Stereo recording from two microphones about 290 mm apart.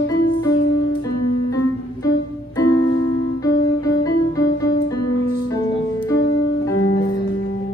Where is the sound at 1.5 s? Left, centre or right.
Centre.